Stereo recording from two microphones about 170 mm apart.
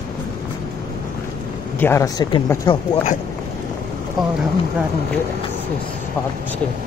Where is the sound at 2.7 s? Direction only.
30° left (ahead or behind).